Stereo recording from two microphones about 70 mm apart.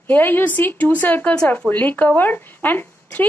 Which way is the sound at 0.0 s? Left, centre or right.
Left.